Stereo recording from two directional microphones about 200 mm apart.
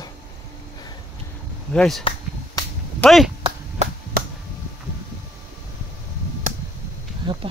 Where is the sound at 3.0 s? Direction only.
Centre (ahead or behind).